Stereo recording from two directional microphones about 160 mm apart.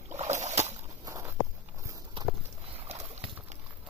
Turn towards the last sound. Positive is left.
turn(degrees=-40)  # may be behind; listen again after turning